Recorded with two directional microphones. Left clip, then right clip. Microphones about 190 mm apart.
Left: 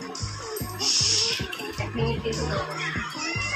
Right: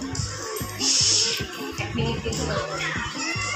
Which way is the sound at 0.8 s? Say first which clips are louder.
Right 2 dB; 30° right (ahead or behind).